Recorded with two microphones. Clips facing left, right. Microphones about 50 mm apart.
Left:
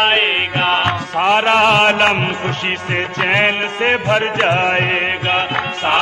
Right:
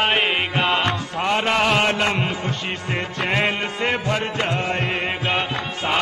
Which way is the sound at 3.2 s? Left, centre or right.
Left.